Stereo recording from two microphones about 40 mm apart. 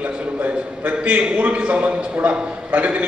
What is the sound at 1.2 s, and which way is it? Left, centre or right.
A man's voice, right.